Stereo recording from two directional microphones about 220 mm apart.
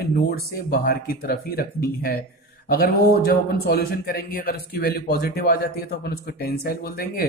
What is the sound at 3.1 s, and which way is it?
A man's voice, 45° left (ahead or behind).